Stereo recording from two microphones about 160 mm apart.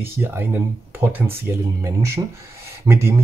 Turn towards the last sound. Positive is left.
turn(degrees=-15)  # may be behind; listen again after turning